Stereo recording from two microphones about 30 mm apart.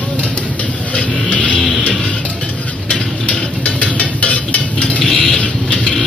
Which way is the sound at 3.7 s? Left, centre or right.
Left.